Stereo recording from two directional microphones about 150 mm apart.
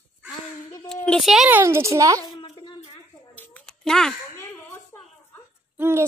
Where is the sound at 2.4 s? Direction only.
30° left (ahead or behind).